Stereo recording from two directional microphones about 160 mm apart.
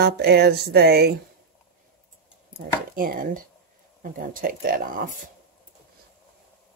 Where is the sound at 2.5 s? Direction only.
60° right (ahead or behind).